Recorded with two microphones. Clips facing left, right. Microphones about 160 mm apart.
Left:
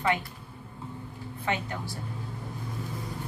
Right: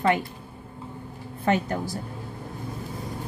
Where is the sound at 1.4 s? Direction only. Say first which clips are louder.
Right 8 dB; 45° right (ahead or behind).